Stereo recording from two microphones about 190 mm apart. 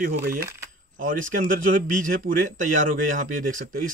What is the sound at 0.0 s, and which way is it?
A man's voice, 50° right (ahead or behind).